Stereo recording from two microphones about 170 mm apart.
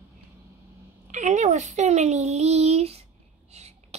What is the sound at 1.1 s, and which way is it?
A child's voice, 45° right (ahead or behind).